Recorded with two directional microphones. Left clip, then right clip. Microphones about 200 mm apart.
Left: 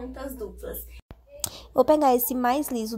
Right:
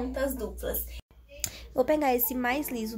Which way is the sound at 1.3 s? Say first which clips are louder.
Left 6 dB; 25° left (ahead or behind).